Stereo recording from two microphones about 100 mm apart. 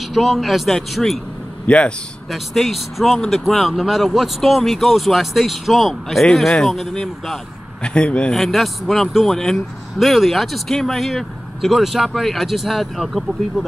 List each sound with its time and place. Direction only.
0.1 s a man's voice: centre (ahead or behind)
1.7 s a man's voice: 10° left (ahead or behind)
2.3 s a man's voice: centre (ahead or behind)